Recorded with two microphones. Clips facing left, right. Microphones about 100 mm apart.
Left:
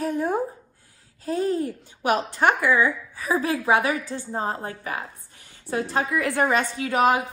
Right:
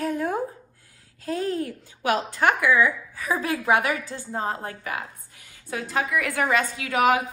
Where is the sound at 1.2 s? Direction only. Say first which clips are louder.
Left 2 dB; 30° left (ahead or behind).